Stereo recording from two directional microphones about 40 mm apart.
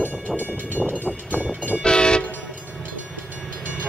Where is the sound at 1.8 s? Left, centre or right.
Left.